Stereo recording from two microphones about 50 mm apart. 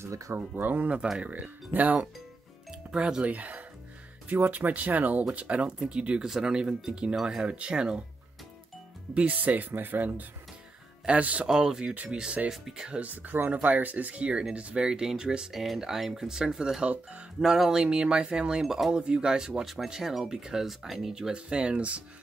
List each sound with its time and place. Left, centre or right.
0.3 s speech: right
2.7 s speech: centre
9.1 s speech: right
11.4 s speech: centre
13.0 s speech: right
14.9 s speech: centre
16.8 s speech: right
17.4 s speech: centre
21.5 s speech: right